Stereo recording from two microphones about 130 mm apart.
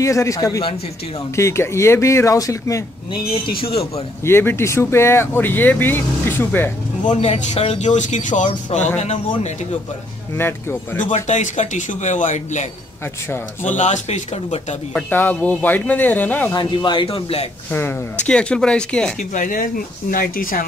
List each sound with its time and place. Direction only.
0.0 s speech: 25° left (ahead or behind)
4.3 s speech: 20° left (ahead or behind)
7.1 s speech: 60° left (ahead or behind)
8.9 s speech: 60° left (ahead or behind)
10.3 s speech: 15° left (ahead or behind)
11.1 s speech: 65° left (ahead or behind)
13.7 s speech: 70° left (ahead or behind)
15.0 s speech: 15° left (ahead or behind)
16.5 s speech: 35° left (ahead or behind)
18.2 s speech: 10° left (ahead or behind)
19.3 s speech: 90° left